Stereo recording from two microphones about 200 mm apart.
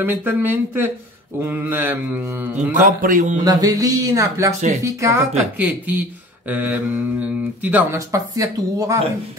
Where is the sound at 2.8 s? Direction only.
40° right (ahead or behind).